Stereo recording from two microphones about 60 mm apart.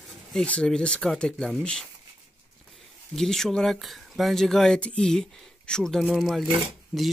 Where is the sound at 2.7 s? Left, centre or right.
Centre.